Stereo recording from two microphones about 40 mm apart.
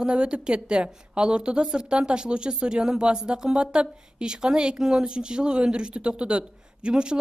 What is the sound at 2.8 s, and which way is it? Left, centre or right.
Speech, centre.